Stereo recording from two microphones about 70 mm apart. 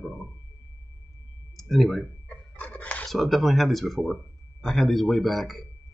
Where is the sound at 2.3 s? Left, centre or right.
Left.